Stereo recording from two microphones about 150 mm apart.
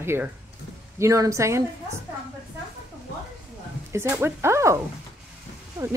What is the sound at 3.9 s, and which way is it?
A woman's voice, 15° right (ahead or behind).